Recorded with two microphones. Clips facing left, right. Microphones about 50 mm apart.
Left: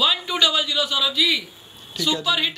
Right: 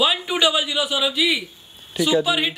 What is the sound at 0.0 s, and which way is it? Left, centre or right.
A man's voice, centre.